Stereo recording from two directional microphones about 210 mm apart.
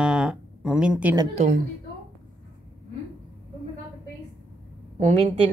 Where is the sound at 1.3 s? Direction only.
35° right (ahead or behind).